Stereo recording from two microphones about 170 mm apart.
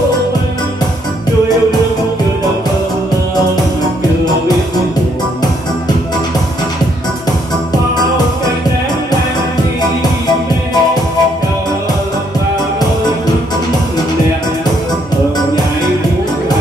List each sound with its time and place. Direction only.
9.8 s music: 25° left (ahead or behind)